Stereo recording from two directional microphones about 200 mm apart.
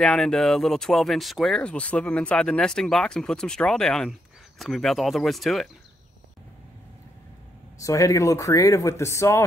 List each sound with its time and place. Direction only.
0.0 s speech: centre (ahead or behind)
7.8 s speech: 15° left (ahead or behind)